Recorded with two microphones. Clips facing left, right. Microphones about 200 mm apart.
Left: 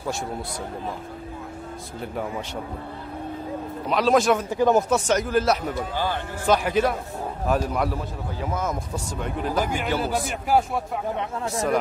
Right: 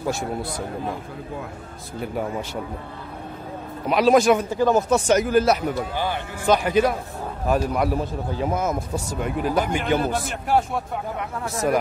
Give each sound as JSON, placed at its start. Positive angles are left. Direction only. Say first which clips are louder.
{"t": 0.1, "sound": "a man's voice", "louder": "right 1 dB", "side_deg": -5}
{"t": 3.9, "sound": "a man's voice", "louder": "right 3 dB", "side_deg": -5}
{"t": 4.5, "sound": "speech", "louder": "even", "side_deg": 20}
{"t": 4.9, "sound": "a man's voice", "louder": "right 3 dB", "side_deg": -5}
{"t": 7.9, "sound": "a man's voice", "louder": "right 5 dB", "side_deg": -15}
{"t": 8.6, "sound": "a man's voice", "louder": "right 3 dB", "side_deg": -5}
{"t": 9.8, "sound": "a man's voice", "louder": "right 3 dB", "side_deg": 5}
{"t": 11.1, "sound": "speech", "louder": "left 1 dB", "side_deg": 15}